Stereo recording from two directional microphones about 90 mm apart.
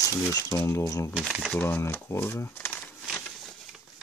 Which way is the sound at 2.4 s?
25° left (ahead or behind).